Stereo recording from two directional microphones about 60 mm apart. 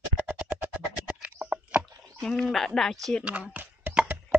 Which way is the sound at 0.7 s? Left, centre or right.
Right.